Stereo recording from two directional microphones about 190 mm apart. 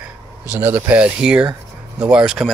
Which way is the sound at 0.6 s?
10° right (ahead or behind).